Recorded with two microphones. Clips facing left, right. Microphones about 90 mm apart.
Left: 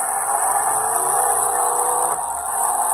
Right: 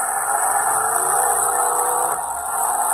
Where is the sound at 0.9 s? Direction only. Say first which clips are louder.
Even; 35° right (ahead or behind).